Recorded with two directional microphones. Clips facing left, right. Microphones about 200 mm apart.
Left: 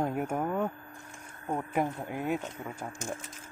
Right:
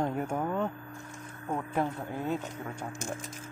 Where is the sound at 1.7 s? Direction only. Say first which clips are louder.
Left 1 dB; 15° left (ahead or behind).